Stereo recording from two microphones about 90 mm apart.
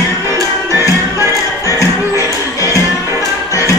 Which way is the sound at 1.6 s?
35° left (ahead or behind).